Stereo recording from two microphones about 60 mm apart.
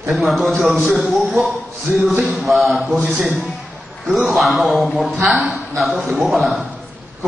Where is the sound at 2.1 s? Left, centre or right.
Right.